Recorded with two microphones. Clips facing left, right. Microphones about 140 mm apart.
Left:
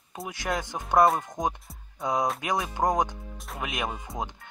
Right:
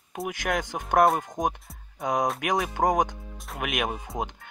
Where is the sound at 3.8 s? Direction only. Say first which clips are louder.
Right 2 dB; 15° right (ahead or behind).